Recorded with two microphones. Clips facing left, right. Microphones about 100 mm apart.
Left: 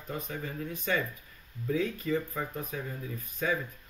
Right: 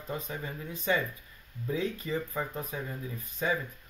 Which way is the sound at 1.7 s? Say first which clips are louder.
Left 2 dB; 25° right (ahead or behind).